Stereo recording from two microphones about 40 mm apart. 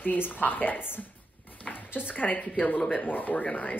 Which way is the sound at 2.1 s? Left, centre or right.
Left.